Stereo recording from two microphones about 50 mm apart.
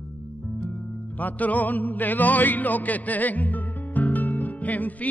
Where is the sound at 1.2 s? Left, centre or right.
Left.